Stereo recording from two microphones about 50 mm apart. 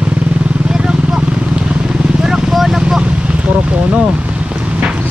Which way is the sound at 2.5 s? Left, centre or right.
Centre.